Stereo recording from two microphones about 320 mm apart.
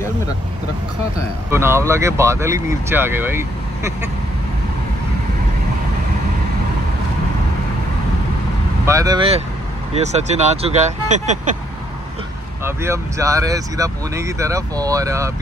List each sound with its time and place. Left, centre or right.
1.5 s speech: centre
8.8 s speech: centre
12.6 s speech: centre